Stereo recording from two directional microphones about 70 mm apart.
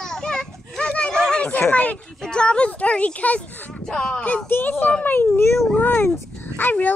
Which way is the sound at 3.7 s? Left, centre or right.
Centre.